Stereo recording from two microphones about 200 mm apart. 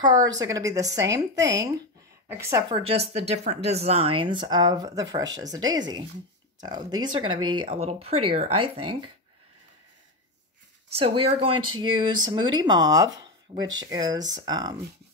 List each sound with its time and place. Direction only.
0.0 s a woman's voice: 20° right (ahead or behind)
2.8 s a woman's voice: 30° right (ahead or behind)
10.9 s a woman's voice: 30° right (ahead or behind)